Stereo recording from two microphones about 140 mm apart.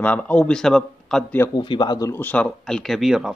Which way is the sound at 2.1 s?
15° left (ahead or behind).